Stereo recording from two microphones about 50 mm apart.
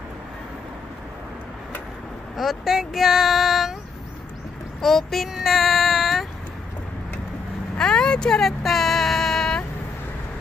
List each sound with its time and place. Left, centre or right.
2.3 s child singing: centre
4.8 s speech: centre
5.3 s child singing: centre
7.7 s vehicle: centre
8.4 s vehicle: centre